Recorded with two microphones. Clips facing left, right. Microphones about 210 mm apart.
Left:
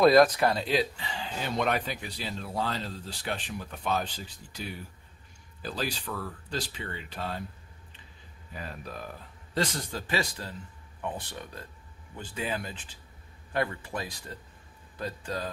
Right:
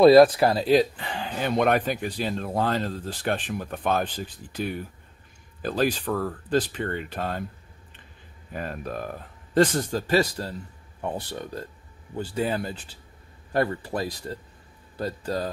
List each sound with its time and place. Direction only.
0.0 s speech: 30° right (ahead or behind); by 7.4 s 50° right (ahead or behind)
8.5 s speech: 50° right (ahead or behind); by 15.5 s 35° right (ahead or behind)